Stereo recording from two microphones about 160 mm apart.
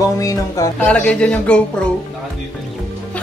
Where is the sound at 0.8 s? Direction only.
5° left (ahead or behind).